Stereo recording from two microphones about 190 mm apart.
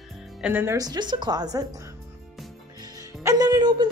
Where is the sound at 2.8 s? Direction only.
20° right (ahead or behind).